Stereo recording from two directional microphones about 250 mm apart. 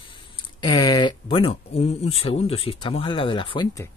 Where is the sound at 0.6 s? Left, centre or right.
Centre.